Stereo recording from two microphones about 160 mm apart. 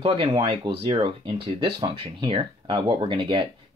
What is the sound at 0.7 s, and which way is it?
Speech, 25° right (ahead or behind).